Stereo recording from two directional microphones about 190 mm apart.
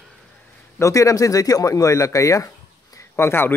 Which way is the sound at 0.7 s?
15° left (ahead or behind).